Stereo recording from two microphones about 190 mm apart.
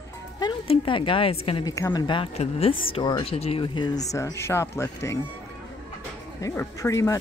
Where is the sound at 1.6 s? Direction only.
15° left (ahead or behind).